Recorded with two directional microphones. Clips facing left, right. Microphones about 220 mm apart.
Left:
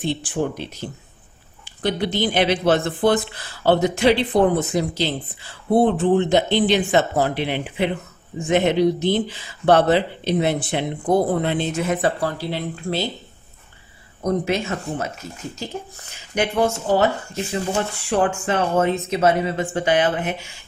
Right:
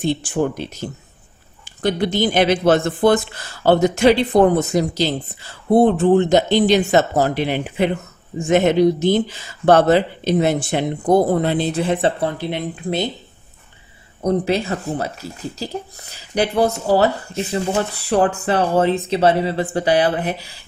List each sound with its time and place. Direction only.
0.0 s speech: 45° right (ahead or behind); by 13.1 s 20° right (ahead or behind)
14.2 s speech: 35° right (ahead or behind)